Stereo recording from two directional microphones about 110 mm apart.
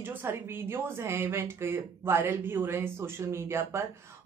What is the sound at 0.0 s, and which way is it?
A woman's voice, 20° right (ahead or behind).